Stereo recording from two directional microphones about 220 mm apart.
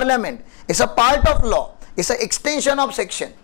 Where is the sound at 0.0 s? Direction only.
20° left (ahead or behind).